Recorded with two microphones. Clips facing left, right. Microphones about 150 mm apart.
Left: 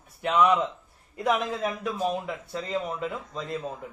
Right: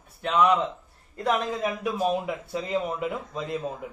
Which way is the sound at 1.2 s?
5° left (ahead or behind).